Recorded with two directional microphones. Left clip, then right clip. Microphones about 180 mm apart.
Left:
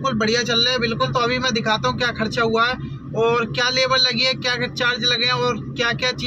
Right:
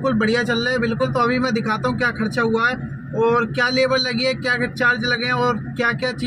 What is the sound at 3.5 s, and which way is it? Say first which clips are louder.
Speech: even; 20° left (ahead or behind).